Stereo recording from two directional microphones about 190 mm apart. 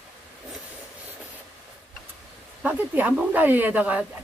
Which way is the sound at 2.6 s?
10° right (ahead or behind).